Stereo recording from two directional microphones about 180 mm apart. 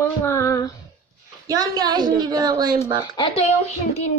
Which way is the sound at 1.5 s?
20° right (ahead or behind).